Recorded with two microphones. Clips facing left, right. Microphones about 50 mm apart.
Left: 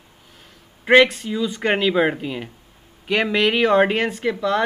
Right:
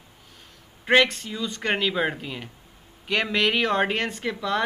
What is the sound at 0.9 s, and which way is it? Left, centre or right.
Speech, centre.